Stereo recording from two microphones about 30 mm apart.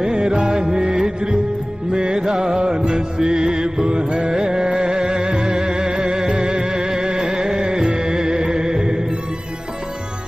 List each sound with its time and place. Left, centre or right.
0.0 s music: right